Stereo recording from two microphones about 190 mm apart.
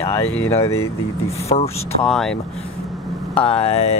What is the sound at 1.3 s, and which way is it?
Speech, 35° left (ahead or behind).